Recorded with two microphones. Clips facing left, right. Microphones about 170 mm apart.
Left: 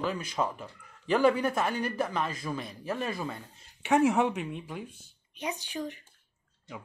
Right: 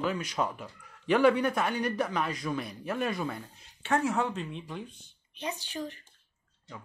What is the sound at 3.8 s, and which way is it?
Speech, 15° left (ahead or behind).